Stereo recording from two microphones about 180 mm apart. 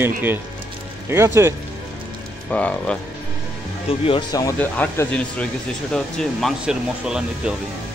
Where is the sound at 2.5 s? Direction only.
10° left (ahead or behind).